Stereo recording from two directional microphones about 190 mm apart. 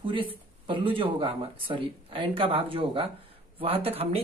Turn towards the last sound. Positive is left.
turn(degrees=-30)  # may be behind; listen again after turning